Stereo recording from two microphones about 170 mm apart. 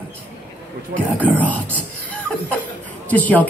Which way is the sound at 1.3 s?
10° left (ahead or behind).